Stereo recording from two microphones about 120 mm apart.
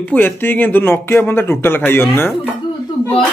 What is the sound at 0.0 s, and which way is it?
Speech, 15° left (ahead or behind).